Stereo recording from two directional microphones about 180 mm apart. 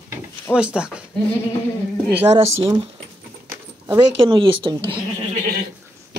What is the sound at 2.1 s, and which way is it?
Speech, 30° right (ahead or behind).